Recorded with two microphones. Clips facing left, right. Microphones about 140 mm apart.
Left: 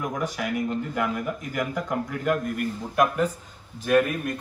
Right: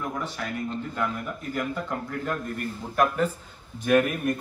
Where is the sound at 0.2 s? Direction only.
15° left (ahead or behind).